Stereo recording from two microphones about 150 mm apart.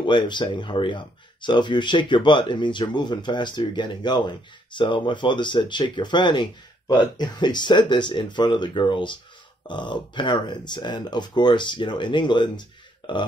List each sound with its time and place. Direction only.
0.0 s speech: 30° left (ahead or behind)